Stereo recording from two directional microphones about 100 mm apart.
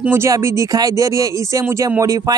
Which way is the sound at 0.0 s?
20° right (ahead or behind).